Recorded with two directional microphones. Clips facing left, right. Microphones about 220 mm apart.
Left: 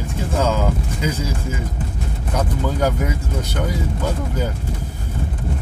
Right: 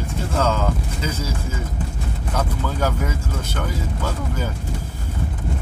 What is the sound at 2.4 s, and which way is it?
Speech, 15° left (ahead or behind).